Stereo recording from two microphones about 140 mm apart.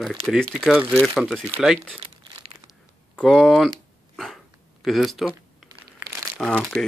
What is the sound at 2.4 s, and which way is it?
Crunch, 45° right (ahead or behind).